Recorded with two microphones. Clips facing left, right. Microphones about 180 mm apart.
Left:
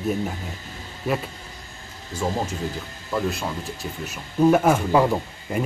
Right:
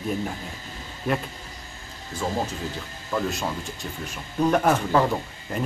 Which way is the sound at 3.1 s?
Centre (ahead or behind).